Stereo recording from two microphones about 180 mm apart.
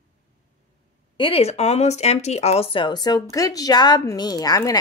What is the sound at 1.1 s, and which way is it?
Speech, 30° left (ahead or behind).